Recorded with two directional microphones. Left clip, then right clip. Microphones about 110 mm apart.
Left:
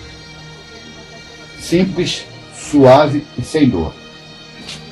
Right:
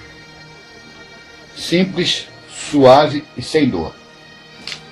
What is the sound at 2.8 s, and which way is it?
Speech, centre (ahead or behind).